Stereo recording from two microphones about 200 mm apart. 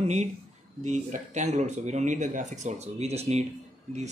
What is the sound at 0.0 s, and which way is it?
Speech, 35° right (ahead or behind).